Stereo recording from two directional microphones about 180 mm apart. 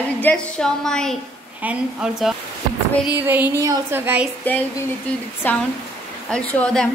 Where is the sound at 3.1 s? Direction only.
10° right (ahead or behind).